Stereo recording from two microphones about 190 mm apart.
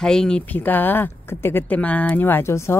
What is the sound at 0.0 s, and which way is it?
Speech, 5° left (ahead or behind).